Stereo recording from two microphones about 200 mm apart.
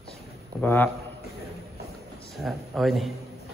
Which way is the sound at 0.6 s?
10° left (ahead or behind).